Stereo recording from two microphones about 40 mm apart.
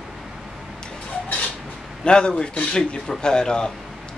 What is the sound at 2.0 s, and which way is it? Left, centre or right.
A man's voice, left.